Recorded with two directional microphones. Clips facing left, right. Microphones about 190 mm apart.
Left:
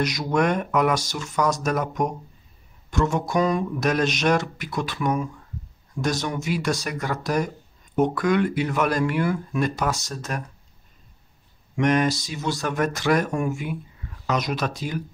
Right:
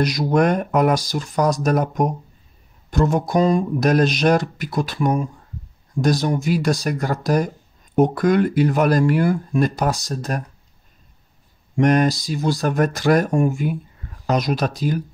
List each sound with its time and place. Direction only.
0.0 s speech: 35° right (ahead or behind)
11.7 s speech: 40° right (ahead or behind)